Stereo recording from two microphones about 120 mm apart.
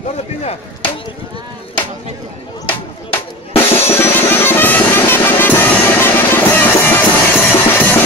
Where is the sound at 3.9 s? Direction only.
20° left (ahead or behind).